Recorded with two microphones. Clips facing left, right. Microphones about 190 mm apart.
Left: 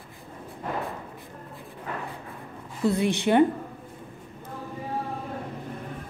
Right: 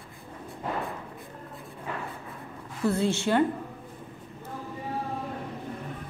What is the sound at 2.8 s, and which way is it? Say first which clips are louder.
Speech: left 2 dB; 15° left (ahead or behind).